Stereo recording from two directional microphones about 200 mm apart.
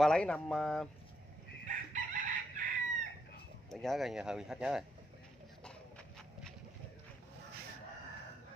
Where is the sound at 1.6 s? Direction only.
40° right (ahead or behind).